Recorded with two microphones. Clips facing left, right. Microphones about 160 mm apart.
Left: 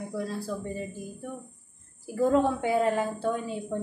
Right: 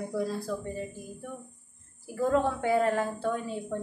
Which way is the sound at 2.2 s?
15° left (ahead or behind).